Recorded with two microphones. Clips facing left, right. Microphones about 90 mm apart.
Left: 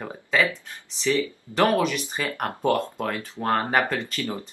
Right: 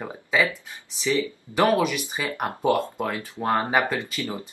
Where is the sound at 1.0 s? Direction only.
15° right (ahead or behind).